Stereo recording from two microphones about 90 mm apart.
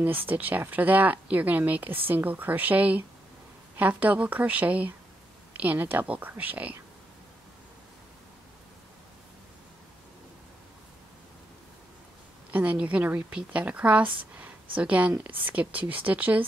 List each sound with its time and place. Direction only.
0.3 s a woman's voice: 20° right (ahead or behind)
12.4 s a woman's voice: 15° right (ahead or behind)